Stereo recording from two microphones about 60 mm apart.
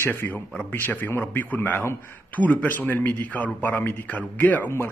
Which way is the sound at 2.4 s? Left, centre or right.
Left.